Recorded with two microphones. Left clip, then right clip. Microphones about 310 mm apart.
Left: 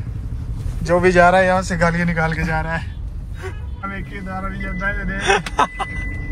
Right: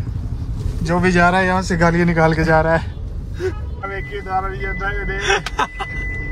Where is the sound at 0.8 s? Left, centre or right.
Centre.